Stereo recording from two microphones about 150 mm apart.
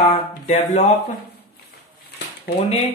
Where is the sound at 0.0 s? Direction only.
50° left (ahead or behind).